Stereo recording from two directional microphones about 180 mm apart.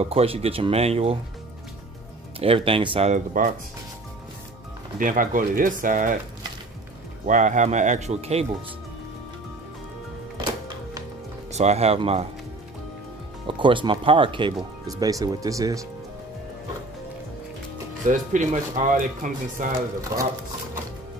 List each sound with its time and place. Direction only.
0.0 s speech: 35° right (ahead or behind)
2.4 s speech: 30° right (ahead or behind)
3.1 s speech: 50° right (ahead or behind)
4.9 s speech: 50° right (ahead or behind)
7.2 s speech: 45° right (ahead or behind)
11.5 s speech: 35° right (ahead or behind)
13.5 s speech: 30° right (ahead or behind)
18.0 s speech: 45° right (ahead or behind)
20.1 s speech: 20° right (ahead or behind)